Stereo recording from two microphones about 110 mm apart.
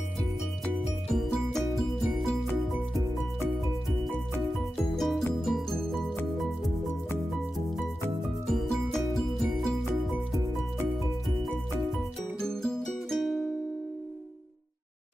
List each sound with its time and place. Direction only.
1.0 s music: centre (ahead or behind)
4.9 s music: centre (ahead or behind)
8.5 s music: 5° left (ahead or behind)
12.4 s music: 5° left (ahead or behind)